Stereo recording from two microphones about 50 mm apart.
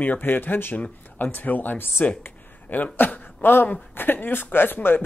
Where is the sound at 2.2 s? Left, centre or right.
Left.